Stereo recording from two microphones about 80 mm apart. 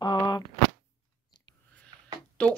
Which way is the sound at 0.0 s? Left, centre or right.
Left.